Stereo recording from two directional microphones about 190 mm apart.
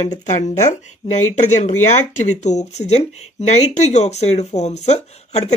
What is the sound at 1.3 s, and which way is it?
Speech, 40° left (ahead or behind).